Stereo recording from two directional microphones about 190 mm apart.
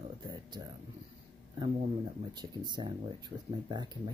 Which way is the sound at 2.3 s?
25° right (ahead or behind).